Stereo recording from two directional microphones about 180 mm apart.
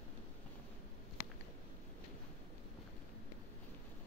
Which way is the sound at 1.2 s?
60° left (ahead or behind).